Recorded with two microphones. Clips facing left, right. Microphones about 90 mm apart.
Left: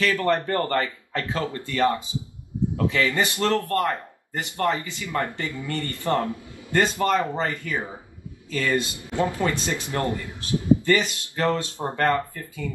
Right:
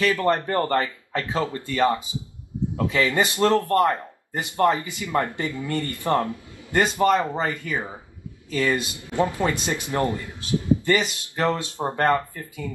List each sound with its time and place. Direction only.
0.0 s speech: 20° right (ahead or behind)